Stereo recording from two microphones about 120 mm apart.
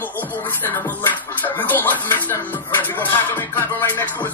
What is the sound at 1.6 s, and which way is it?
Speech, 15° left (ahead or behind).